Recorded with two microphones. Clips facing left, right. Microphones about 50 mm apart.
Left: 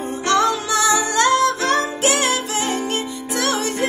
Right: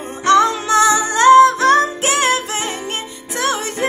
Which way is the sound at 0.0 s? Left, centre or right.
Right.